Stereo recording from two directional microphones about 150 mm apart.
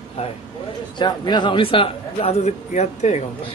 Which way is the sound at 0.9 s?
30° left (ahead or behind).